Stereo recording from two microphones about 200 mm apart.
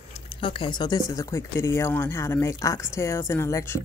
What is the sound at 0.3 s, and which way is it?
Speech, 25° left (ahead or behind).